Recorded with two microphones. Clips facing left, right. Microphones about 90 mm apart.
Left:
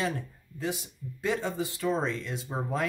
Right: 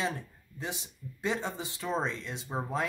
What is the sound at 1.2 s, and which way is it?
Speech, 20° right (ahead or behind).